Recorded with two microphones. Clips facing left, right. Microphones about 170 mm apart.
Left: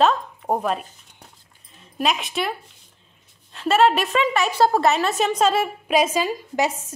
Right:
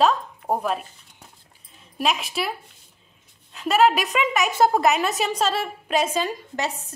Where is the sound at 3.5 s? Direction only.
5° right (ahead or behind).